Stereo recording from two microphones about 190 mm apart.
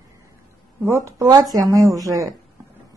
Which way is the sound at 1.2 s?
20° right (ahead or behind).